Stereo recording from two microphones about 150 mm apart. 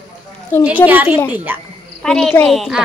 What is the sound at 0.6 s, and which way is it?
A child's voice, 10° right (ahead or behind).